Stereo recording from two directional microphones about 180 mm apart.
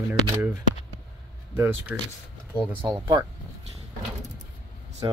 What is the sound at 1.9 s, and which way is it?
Speech, 10° right (ahead or behind).